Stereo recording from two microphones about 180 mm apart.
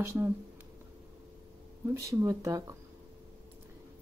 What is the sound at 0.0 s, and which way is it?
Speech, 15° right (ahead or behind).